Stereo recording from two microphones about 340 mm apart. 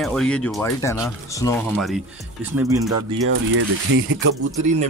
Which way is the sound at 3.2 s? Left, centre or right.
Right.